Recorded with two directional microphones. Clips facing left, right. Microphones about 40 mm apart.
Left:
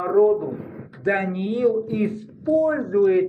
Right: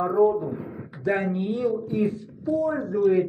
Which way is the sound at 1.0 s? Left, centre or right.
Left.